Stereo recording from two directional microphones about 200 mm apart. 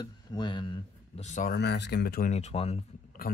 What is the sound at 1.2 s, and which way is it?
Speech, 40° left (ahead or behind).